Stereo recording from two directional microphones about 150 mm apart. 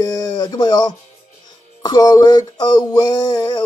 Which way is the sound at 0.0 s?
25° left (ahead or behind).